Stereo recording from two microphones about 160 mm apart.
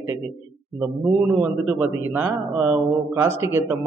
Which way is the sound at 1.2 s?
10° right (ahead or behind).